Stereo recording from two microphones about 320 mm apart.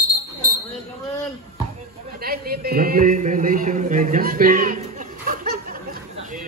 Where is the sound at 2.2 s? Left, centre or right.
Right.